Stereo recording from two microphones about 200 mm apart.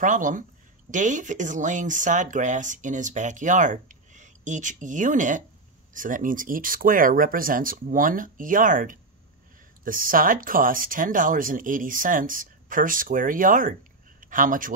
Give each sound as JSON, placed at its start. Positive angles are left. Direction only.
{"t": 0.0, "sound": "speech", "side_deg": -40}